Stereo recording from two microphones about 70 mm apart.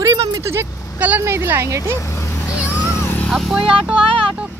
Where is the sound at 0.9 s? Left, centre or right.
Right.